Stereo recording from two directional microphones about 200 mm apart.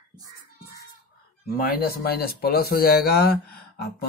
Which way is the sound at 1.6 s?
50° left (ahead or behind).